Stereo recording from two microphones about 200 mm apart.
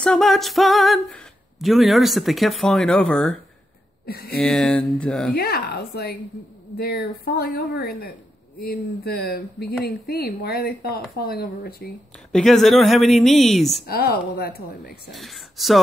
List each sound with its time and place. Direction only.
0.0 s speech: 5° left (ahead or behind)
4.0 s speech: 50° left (ahead or behind)
4.4 s speech: 5° left (ahead or behind)
5.3 s speech: 50° left (ahead or behind)
12.3 s speech: 5° left (ahead or behind)
13.8 s speech: 50° left (ahead or behind)
15.1 s speech: centre (ahead or behind)